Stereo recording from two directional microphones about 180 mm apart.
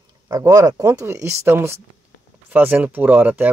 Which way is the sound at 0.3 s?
20° right (ahead or behind).